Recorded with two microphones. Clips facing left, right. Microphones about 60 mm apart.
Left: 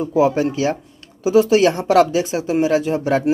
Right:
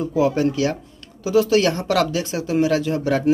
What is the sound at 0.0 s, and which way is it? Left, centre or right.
Speech, left.